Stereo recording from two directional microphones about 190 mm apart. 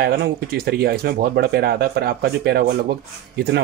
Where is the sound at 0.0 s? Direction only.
55° right (ahead or behind).